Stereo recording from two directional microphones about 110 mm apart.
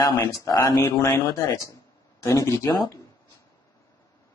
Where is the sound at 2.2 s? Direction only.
25° left (ahead or behind).